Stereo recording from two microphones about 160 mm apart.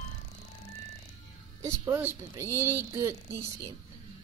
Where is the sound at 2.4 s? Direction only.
15° left (ahead or behind).